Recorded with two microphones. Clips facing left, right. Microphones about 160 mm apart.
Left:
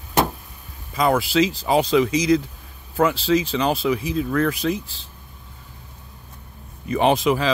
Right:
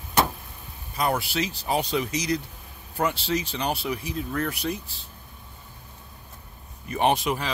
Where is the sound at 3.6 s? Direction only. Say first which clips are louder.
Left 7 dB; 90° left.